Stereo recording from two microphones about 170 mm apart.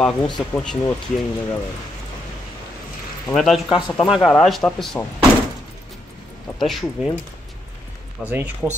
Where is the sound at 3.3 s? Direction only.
Centre (ahead or behind).